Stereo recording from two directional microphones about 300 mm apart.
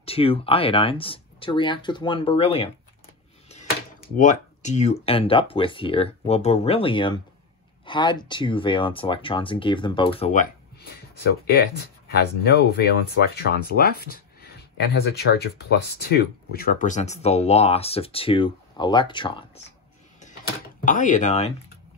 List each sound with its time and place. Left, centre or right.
0.0 s speech: centre
20.8 s speech: left